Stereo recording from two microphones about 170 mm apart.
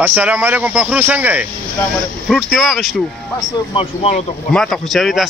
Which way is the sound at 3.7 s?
35° left (ahead or behind).